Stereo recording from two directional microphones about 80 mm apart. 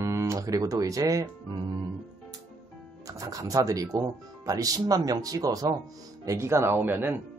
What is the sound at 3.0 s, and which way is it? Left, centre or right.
Speech, right.